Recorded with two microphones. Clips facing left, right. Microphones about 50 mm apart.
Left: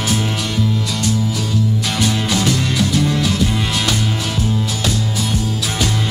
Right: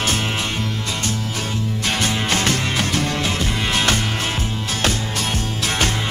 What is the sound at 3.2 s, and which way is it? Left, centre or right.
Music, right.